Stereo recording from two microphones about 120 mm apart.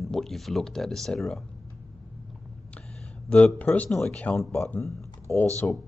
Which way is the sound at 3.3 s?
10° left (ahead or behind).